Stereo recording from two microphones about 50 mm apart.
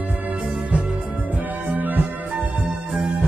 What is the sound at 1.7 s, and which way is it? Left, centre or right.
Music, right.